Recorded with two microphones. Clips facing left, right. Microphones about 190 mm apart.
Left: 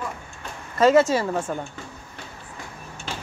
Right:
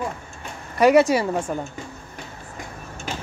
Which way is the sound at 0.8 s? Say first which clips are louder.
Right 1 dB; 15° right (ahead or behind).